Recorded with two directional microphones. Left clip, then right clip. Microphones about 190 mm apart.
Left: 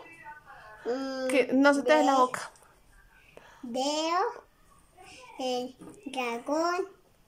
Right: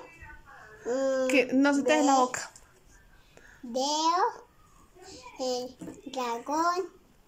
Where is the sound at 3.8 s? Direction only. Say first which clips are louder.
Right 2 dB; 15° left (ahead or behind).